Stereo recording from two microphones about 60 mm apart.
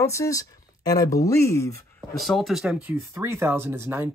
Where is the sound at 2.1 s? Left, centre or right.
Centre.